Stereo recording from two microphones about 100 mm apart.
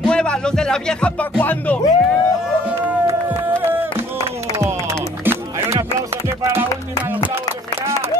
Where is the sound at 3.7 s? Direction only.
20° right (ahead or behind).